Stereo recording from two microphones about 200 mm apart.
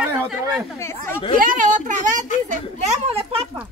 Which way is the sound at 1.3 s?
45° right (ahead or behind).